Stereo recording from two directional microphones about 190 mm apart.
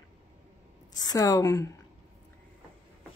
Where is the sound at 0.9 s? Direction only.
20° left (ahead or behind).